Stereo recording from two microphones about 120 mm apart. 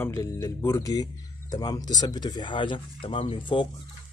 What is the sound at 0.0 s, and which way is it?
Speech, 25° left (ahead or behind).